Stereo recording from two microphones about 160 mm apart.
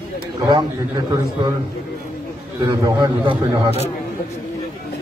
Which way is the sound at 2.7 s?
25° right (ahead or behind).